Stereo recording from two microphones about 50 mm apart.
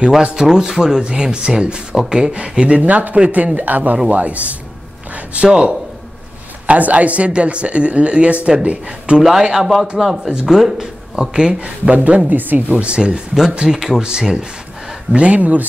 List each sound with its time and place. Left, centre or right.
0.1 s speech: centre
6.6 s speech: right
9.2 s speech: centre; by 12.2 s right
12.3 s speech: right
12.7 s speech: right